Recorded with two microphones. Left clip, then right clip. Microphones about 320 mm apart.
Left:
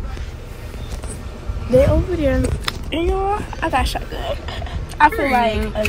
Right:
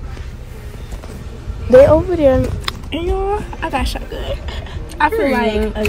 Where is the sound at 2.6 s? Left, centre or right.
Centre.